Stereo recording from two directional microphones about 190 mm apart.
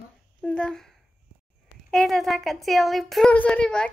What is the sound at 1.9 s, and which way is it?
A woman's voice, centre (ahead or behind).